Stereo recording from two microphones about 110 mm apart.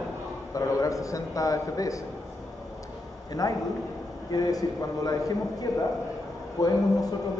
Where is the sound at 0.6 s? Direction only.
30° left (ahead or behind).